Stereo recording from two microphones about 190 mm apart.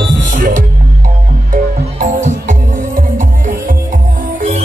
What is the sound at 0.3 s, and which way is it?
Music, 45° right (ahead or behind).